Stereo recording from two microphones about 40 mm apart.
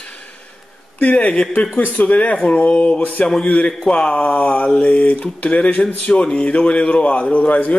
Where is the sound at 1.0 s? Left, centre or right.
Left.